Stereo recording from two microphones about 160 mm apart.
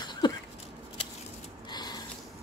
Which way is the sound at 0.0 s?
25° left (ahead or behind).